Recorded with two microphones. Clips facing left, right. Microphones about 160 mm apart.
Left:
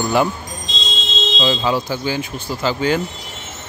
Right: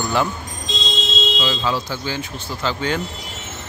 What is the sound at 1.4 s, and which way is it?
Speech, 15° left (ahead or behind).